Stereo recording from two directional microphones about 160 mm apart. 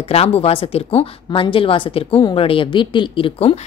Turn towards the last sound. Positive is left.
turn(degrees=35)  # may be behind; listen again after turning